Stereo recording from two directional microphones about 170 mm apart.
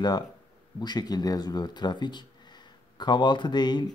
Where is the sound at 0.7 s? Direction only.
25° left (ahead or behind).